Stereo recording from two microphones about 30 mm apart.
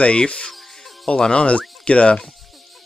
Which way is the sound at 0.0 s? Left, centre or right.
Left.